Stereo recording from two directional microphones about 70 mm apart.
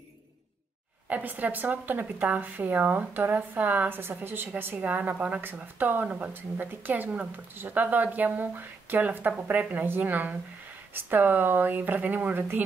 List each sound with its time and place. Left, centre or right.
1.0 s speech: right